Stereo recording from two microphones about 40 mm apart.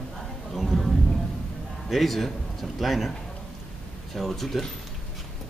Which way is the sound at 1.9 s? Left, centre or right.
Centre.